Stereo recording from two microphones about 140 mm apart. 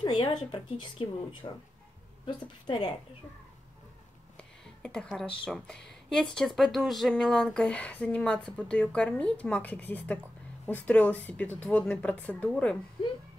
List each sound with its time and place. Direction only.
0.0 s speech: 35° left (ahead or behind)
4.4 s a sound: 5° left (ahead or behind)
5.4 s speech: 5° left (ahead or behind)